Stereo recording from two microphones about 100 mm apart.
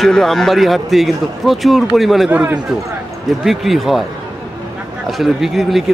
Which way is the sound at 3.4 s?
Centre (ahead or behind).